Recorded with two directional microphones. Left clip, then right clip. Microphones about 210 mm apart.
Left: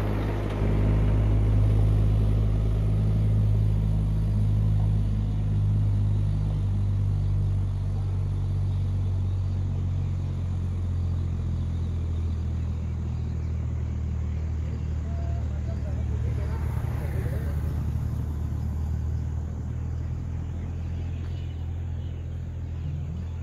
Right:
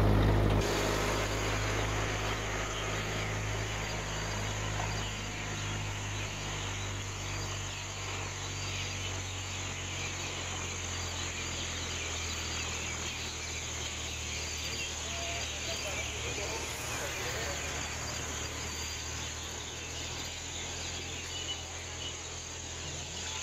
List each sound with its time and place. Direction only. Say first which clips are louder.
0.0 s vehicle: right 2 dB; 15° right (ahead or behind)